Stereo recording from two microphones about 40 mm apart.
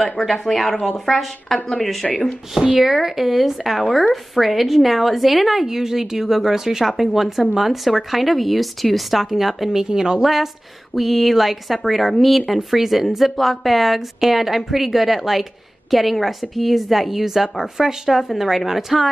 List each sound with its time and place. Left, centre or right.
0.2 s speech: centre
2.0 s speech: left
2.5 s speech: centre
2.8 s a woman's voice: centre
10.2 s a woman's voice: centre